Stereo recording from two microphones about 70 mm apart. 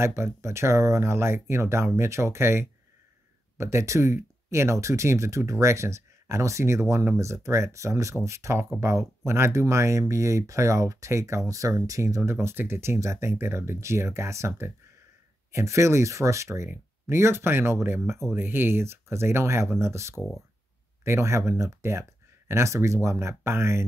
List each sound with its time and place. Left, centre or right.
0.0 s speech: right